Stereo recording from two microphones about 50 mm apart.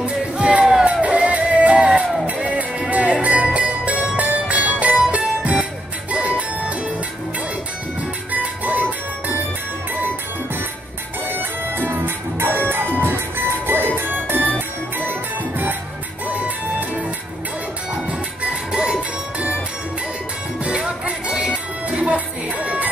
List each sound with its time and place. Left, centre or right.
0.0 s music: right
8.3 s music: right
11.2 s music: right
16.3 s music: right
18.4 s music: centre
20.6 s music: right